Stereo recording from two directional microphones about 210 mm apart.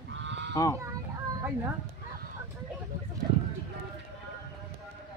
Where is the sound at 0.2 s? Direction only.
60° right (ahead or behind).